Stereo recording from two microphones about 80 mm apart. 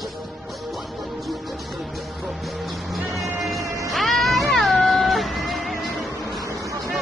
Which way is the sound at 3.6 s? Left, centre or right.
Right.